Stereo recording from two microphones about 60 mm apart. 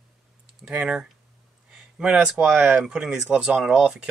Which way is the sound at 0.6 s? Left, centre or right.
Right.